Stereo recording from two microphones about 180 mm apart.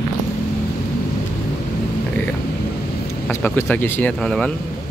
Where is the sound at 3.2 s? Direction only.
10° left (ahead or behind).